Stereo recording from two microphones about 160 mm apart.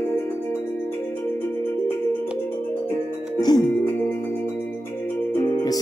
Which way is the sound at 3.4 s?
25° left (ahead or behind).